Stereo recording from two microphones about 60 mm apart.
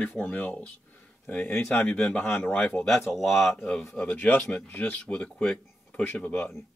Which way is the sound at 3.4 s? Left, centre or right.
Left.